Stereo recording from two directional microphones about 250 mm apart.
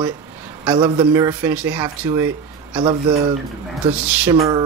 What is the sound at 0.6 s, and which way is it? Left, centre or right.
Speech, centre.